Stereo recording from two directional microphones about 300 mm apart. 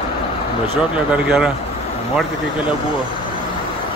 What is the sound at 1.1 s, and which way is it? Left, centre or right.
Speech, centre.